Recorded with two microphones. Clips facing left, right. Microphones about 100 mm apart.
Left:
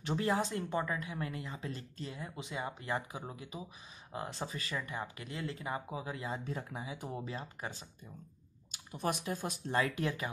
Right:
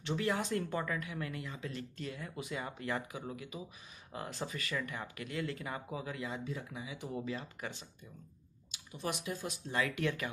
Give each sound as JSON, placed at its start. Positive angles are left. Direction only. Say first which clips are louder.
{"t": 0.0, "sound": "speech", "louder": "left 2 dB", "side_deg": 35}
{"t": 8.7, "sound": "a sound", "louder": "left 3 dB", "side_deg": 50}
{"t": 9.3, "sound": "speech", "louder": "left 2 dB", "side_deg": 50}
{"t": 9.7, "sound": "speech", "louder": "left 1 dB", "side_deg": 35}